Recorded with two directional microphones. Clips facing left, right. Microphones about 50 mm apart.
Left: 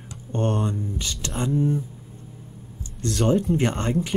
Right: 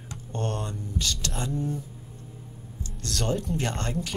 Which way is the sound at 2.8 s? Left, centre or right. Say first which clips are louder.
Left 7 dB; left.